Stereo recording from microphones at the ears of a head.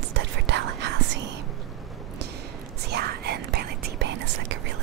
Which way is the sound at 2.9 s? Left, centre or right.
Right.